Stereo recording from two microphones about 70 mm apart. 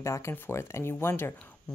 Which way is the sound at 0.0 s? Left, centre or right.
Left.